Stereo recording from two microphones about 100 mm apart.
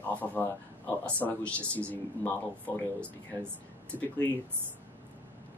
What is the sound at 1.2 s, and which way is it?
Speech, 15° left (ahead or behind).